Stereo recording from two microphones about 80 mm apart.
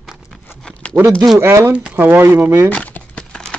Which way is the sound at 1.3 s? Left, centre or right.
Right.